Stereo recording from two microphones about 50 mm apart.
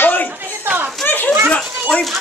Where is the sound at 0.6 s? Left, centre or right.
Right.